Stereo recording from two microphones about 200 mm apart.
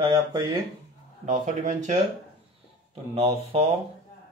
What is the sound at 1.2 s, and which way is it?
Speech, 40° right (ahead or behind).